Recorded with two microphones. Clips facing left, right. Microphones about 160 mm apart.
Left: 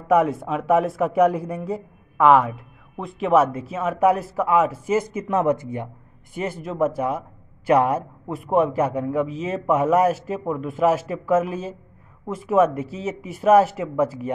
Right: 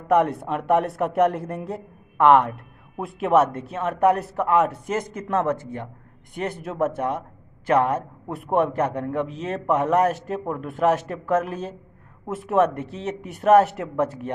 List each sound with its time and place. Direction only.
0.1 s a man's voice: 5° left (ahead or behind)